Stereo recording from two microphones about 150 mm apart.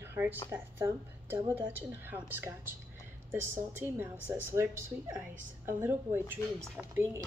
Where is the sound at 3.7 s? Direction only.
15° right (ahead or behind).